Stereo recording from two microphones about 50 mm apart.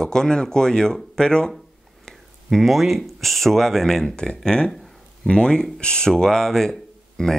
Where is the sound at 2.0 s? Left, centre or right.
Centre.